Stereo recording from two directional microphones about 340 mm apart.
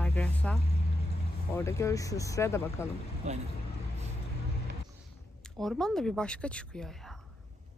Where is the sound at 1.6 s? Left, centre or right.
Centre.